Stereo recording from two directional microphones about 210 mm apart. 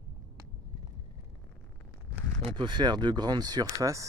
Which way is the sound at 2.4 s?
20° right (ahead or behind).